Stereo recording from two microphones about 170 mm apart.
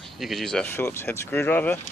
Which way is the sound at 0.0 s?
Centre (ahead or behind).